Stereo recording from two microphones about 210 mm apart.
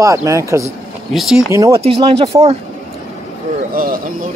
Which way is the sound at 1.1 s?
Centre (ahead or behind).